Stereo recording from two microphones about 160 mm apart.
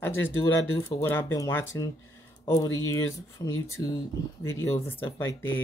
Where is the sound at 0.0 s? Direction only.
15° left (ahead or behind).